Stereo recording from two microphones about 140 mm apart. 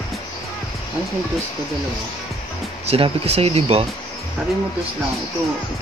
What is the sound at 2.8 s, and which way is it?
Speech, 45° right (ahead or behind).